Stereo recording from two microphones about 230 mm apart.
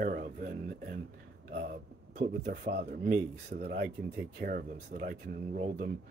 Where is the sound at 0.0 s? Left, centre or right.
Right.